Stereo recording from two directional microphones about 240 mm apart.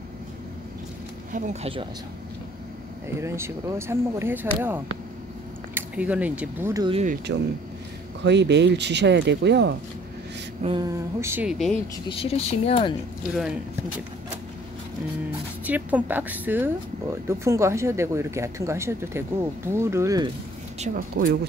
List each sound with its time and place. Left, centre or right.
1.3 s speech: right
3.2 s speech: centre
5.8 s speech: centre; by 7.2 s right
8.2 s speech: right
10.6 s speech: centre
12.1 s speech: left
13.4 s speech: centre
15.6 s speech: centre
20.8 s speech: right